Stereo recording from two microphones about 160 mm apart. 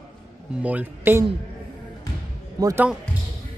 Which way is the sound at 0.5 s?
10° right (ahead or behind).